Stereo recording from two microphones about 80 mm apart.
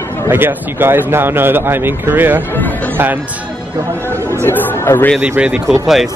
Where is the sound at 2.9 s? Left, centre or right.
Right.